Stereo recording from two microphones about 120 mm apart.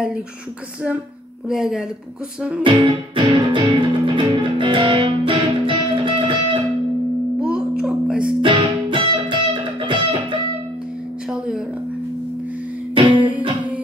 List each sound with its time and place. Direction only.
1.5 s speech: 5° right (ahead or behind)
2.6 s music: 45° right (ahead or behind)
7.3 s music: 5° right (ahead or behind)
8.4 s music: 45° right (ahead or behind)
13.0 s music: 40° right (ahead or behind)